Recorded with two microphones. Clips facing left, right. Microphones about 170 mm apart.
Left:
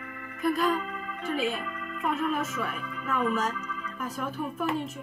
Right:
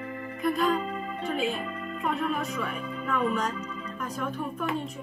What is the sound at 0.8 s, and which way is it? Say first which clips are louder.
Music: right 4 dB; 30° right (ahead or behind).